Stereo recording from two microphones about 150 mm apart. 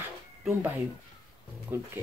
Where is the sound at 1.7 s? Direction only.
15° right (ahead or behind).